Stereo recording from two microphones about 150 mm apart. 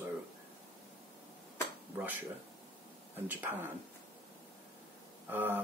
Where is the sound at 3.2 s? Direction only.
10° right (ahead or behind).